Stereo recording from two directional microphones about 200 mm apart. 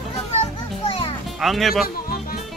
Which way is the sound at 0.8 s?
30° left (ahead or behind).